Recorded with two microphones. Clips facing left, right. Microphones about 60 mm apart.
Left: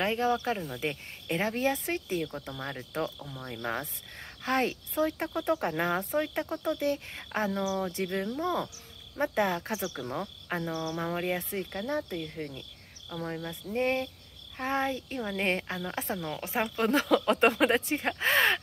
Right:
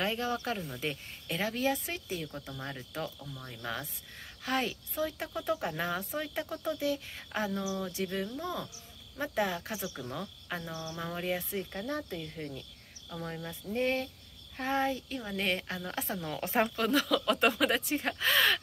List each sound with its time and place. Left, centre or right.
0.0 s speech: left
2.3 s speech: left
2.6 s speech: left
7.9 s speech: left
10.7 s speech: left
11.0 s speech: left
13.2 s speech: centre
13.7 s speech: left
16.3 s speech: centre
16.7 s speech: left